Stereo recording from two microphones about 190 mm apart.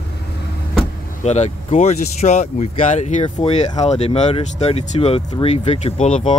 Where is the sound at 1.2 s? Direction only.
35° left (ahead or behind).